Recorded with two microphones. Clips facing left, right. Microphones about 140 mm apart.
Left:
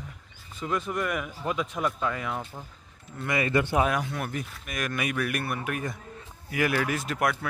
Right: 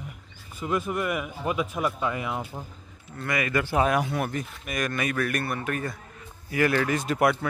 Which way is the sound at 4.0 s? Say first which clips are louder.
Right 5 dB; 10° right (ahead or behind).